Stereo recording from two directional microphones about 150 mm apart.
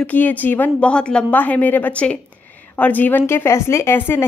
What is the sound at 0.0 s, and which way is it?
A woman's voice, 10° left (ahead or behind).